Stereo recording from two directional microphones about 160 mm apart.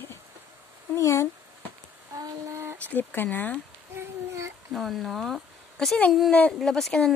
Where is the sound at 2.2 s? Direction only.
15° right (ahead or behind).